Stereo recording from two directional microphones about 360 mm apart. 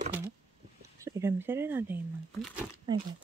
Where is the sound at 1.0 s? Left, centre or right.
Centre.